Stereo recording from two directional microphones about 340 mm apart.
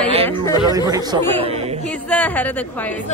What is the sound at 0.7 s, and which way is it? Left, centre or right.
Music, centre.